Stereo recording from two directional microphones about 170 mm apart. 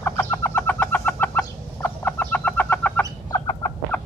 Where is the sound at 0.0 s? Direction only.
15° left (ahead or behind).